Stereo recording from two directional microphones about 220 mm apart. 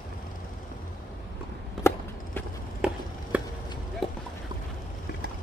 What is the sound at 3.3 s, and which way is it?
Chop, 5° right (ahead or behind).